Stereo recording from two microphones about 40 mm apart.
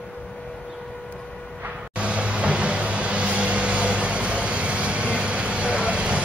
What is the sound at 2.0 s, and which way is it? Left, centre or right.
Vehicle, right.